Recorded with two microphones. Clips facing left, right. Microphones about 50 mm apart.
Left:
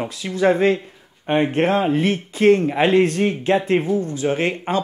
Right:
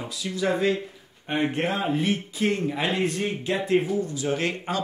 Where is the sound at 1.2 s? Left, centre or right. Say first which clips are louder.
Left 7 dB; left.